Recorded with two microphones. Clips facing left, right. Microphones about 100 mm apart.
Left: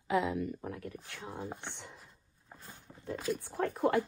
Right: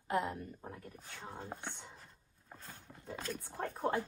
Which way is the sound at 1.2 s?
15° left (ahead or behind).